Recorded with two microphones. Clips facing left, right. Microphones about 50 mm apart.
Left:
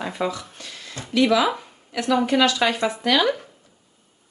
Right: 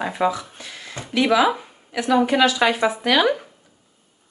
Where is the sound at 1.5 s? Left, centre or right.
Centre.